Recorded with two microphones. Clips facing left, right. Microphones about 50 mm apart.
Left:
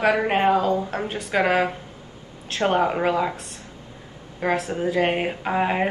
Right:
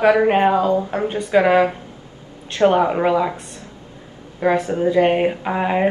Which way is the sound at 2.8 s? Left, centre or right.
Centre.